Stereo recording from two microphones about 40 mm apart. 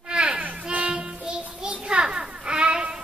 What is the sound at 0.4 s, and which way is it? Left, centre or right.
Child singing, right.